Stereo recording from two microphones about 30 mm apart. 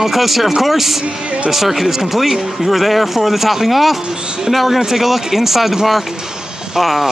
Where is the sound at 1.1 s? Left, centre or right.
Right.